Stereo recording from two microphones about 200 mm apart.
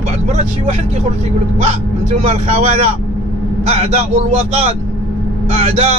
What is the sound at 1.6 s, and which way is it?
Speech, 30° right (ahead or behind).